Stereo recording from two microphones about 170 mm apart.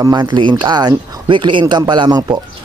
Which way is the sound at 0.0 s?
25° right (ahead or behind).